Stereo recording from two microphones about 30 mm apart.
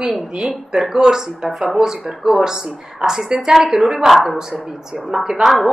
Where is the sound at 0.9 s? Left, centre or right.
Centre.